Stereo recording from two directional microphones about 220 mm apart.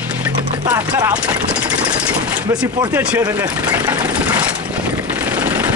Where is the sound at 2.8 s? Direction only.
5° right (ahead or behind).